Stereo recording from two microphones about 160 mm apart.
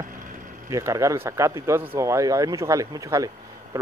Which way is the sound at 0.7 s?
20° right (ahead or behind).